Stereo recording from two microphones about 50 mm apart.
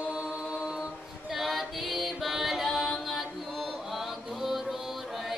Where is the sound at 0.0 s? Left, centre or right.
Centre.